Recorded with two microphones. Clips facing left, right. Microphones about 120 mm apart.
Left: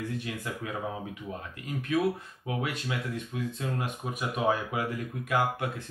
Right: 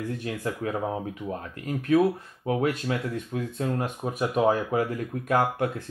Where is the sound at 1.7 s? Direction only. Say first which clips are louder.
Right 6 dB; 40° right (ahead or behind).